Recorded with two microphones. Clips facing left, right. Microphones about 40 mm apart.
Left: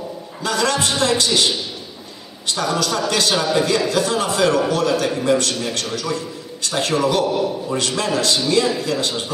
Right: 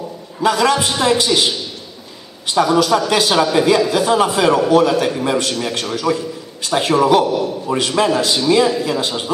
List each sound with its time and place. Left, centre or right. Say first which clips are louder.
0.4 s a man's voice: right 5 dB; centre